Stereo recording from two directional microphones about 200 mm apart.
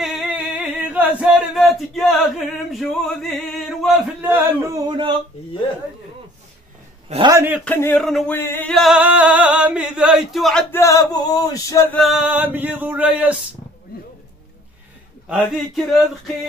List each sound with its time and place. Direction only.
0.0 s chant: centre (ahead or behind)
4.8 s speech: 20° right (ahead or behind)
7.1 s a man's voice: 25° right (ahead or behind)
7.3 s male singing: 10° right (ahead or behind)
7.6 s male singing: 10° left (ahead or behind)
8.4 s singing: 10° left (ahead or behind)
10.7 s male singing: 15° left (ahead or behind)
12.0 s male singing: centre (ahead or behind)
15.2 s singing: centre (ahead or behind)